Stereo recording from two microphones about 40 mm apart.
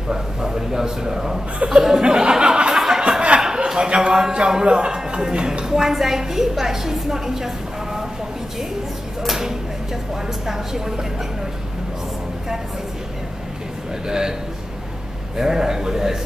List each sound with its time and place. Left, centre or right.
0.1 s a man's voice: centre
2.7 s a sound: centre
4.3 s a woman's voice: centre
10.4 s a man's voice: centre
14.0 s a man's voice: centre
15.3 s a man's voice: centre